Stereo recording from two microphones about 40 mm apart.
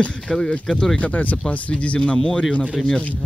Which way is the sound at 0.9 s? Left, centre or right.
Left.